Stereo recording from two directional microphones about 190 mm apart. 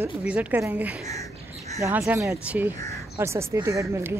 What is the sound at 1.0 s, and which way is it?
Speech, 15° left (ahead or behind).